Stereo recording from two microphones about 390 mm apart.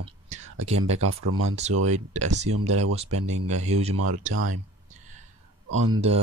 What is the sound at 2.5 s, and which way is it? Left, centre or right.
Speech, right.